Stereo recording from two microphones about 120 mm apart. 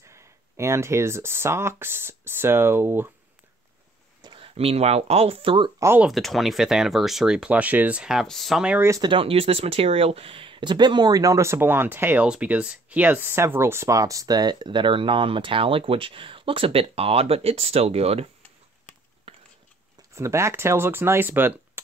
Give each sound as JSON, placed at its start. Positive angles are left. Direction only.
{"t": 0.1, "sound": "speech", "side_deg": -25}
{"t": 4.2, "sound": "a sound", "side_deg": -40}
{"t": 4.6, "sound": "speech", "side_deg": -55}
{"t": 5.9, "sound": "speech", "side_deg": 0}
{"t": 8.6, "sound": "speech", "side_deg": -15}
{"t": 9.0, "sound": "speech", "side_deg": -50}
{"t": 19.3, "sound": "a sound", "side_deg": -55}
{"t": 20.2, "sound": "speech", "side_deg": -25}